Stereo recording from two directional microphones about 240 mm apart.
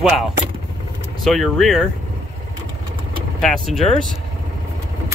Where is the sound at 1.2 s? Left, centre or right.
Centre.